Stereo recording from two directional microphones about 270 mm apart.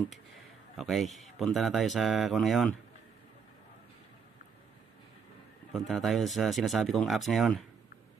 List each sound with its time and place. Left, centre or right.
0.7 s speech: centre
5.7 s speech: centre